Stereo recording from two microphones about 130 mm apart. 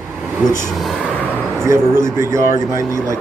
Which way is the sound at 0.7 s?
Centre (ahead or behind).